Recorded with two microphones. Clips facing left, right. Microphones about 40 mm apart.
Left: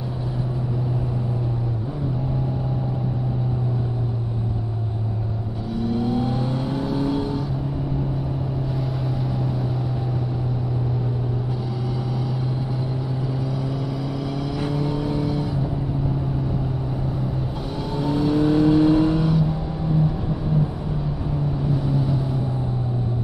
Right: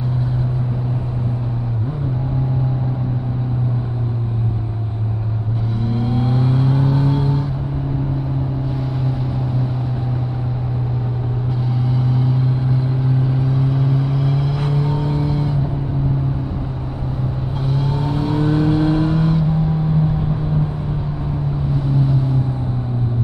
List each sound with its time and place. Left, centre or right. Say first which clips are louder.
6.2 s vehicle: right 5 dB; right
13.0 s vehicle: right 7 dB; right
15.0 s music: right 3 dB; centre
17.6 s vehicle: right 4 dB; centre